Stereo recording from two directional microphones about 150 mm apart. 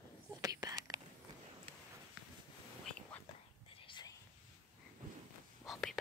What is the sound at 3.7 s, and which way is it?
Whispering, 35° left (ahead or behind).